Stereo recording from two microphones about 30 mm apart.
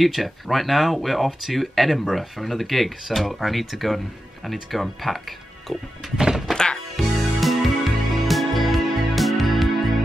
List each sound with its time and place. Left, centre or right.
0.0 s speech: centre
6.5 s music: left
7.0 s music: centre